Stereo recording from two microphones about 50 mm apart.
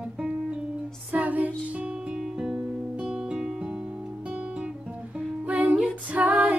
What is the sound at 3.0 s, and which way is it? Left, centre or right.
Guitar, centre.